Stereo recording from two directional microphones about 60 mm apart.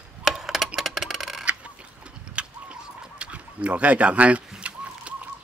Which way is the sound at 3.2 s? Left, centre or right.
Centre.